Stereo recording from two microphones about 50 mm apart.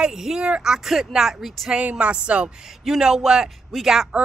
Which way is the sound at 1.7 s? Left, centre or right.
Right.